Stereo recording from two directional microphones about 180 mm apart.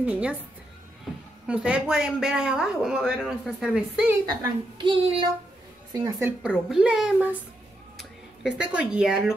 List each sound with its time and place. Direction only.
0.0 s speech: 5° right (ahead or behind)
1.5 s a woman's voice: 5° right (ahead or behind)
4.3 s a child's voice: 25° right (ahead or behind)
5.9 s speech: 15° right (ahead or behind)